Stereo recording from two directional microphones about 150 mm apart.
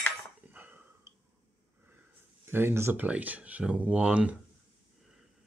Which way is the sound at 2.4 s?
15° right (ahead or behind).